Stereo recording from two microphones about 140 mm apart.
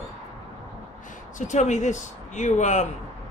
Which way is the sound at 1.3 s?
60° left (ahead or behind).